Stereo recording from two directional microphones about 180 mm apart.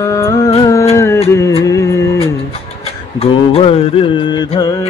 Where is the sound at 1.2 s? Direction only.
15° left (ahead or behind).